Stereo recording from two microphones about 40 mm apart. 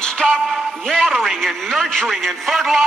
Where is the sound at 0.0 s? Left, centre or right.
Centre.